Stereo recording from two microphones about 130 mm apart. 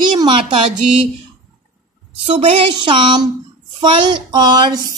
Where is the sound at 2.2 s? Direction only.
45° right (ahead or behind).